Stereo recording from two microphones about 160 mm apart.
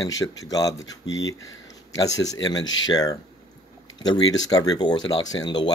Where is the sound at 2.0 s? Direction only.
20° left (ahead or behind).